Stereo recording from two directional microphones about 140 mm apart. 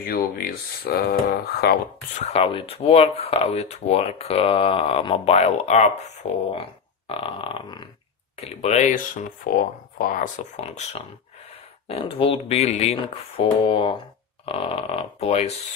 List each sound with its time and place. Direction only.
0.0 s a sound: 90° left
2.1 s speech: 50° left (ahead or behind)
6.5 s speech: 40° left (ahead or behind)
8.4 s speech: 50° left (ahead or behind)